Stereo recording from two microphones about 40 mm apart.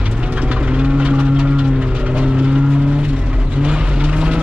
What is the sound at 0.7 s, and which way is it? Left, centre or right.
Vehicle, right.